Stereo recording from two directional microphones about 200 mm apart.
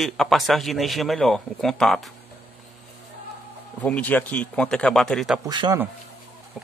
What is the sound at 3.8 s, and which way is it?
A man's voice, 5° left (ahead or behind).